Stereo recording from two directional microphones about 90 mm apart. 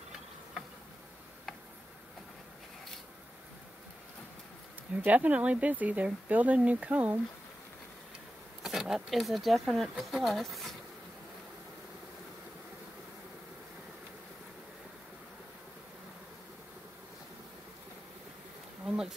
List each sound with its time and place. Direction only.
4.9 s speech: 15° right (ahead or behind)
8.6 s speech: 5° right (ahead or behind)
18.9 s bee: 5° right (ahead or behind)